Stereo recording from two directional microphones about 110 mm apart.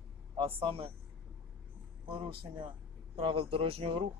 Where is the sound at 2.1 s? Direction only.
55° right (ahead or behind).